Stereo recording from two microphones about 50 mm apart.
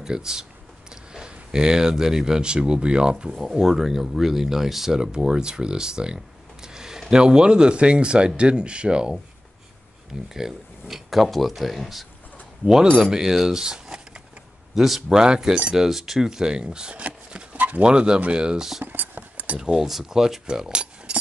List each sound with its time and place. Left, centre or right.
0.0 s speech: centre
3.4 s speech: centre
4.9 s speech: centre
10.3 s speech: centre
13.1 s speech: centre
14.8 s speech: centre
15.0 s speech: centre
17.6 s pigeon: right
17.8 s speech: centre
18.9 s a sound: right
19.6 s speech: centre